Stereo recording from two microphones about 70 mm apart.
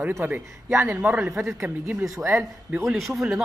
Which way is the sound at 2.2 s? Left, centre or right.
Right.